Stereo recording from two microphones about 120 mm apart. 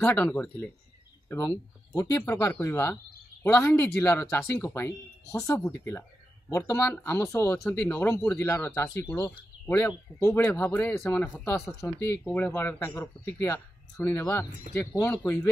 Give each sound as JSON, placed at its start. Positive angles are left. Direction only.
{"t": 0.0, "sound": "speech", "side_deg": 15}
{"t": 2.0, "sound": "speech", "side_deg": 20}
{"t": 10.2, "sound": "speech", "side_deg": 20}
{"t": 11.8, "sound": "speech", "side_deg": 25}